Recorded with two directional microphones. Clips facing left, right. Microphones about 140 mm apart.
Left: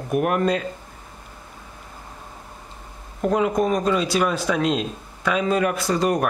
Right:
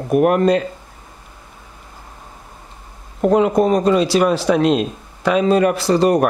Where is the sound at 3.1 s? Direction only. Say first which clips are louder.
Right 6 dB; 30° right (ahead or behind).